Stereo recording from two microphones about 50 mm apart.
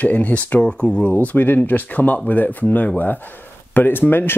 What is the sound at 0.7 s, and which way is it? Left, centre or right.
Speech, centre.